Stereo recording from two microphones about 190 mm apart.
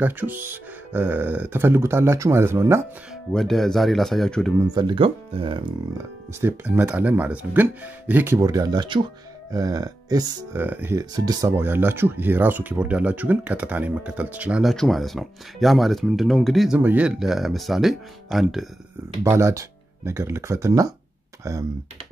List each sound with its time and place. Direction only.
0.0 s speech: 10° right (ahead or behind)
3.3 s speech: centre (ahead or behind)
4.7 s speech: 25° right (ahead or behind)
5.9 s speech: 15° right (ahead or behind)
19.2 s speech: 15° right (ahead or behind)